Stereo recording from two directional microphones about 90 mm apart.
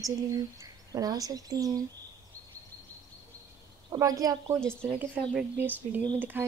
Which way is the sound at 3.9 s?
40° right (ahead or behind).